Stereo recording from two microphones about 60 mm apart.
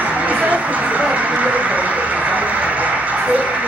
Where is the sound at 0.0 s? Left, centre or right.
Right.